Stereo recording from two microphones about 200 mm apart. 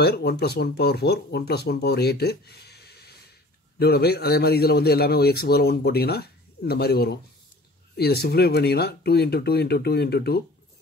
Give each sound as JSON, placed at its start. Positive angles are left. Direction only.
{"t": 0.0, "sound": "a man's voice", "side_deg": 55}